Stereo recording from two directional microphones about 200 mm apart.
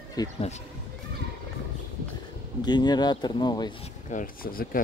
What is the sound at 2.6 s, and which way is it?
Speech, 20° left (ahead or behind).